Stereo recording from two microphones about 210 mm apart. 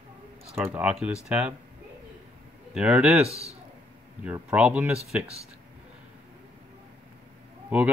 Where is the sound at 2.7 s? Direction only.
5° right (ahead or behind).